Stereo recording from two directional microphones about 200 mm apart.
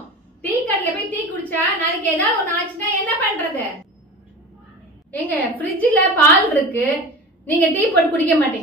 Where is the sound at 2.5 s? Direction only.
10° left (ahead or behind).